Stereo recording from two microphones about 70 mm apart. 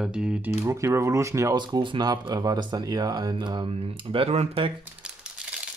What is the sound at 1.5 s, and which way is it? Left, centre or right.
Speech, right.